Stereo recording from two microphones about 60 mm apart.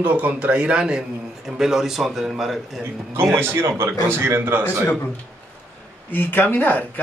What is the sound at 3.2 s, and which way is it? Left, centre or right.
A man's voice, right.